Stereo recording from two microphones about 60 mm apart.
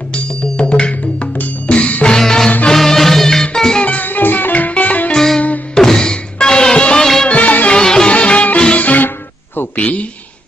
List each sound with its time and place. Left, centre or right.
0.1 s music: centre
2.1 s music: centre
3.8 s music: left
5.1 s music: centre
7.8 s music: centre
9.8 s speech: left